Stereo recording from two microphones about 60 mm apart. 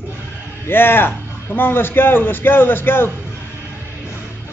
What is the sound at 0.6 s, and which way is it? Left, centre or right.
A man's voice, left.